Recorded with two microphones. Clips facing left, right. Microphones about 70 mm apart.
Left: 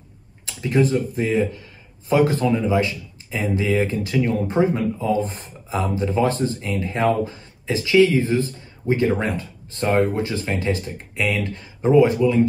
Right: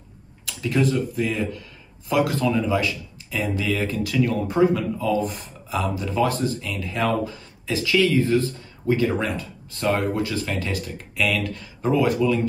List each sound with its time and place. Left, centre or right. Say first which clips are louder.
0.5 s speech: left 3 dB; left